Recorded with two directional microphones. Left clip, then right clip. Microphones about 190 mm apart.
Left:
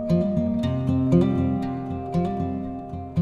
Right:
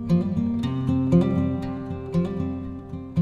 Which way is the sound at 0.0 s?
Centre (ahead or behind).